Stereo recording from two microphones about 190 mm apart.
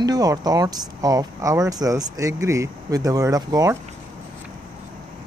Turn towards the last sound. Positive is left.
turn(degrees=-15)  # may be behind; listen again after turning